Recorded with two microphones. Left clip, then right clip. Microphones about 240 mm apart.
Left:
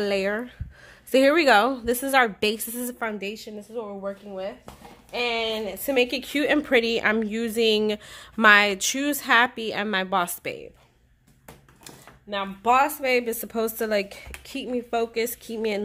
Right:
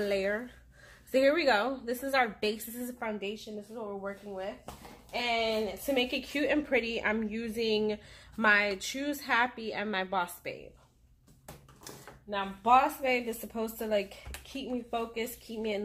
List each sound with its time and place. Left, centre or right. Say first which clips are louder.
0.0 s speech: left 6 dB; left
12.3 s speech: left 4 dB; left